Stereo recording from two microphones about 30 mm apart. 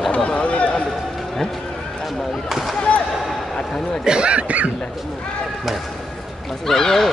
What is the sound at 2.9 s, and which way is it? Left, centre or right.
Basketball bounce, left.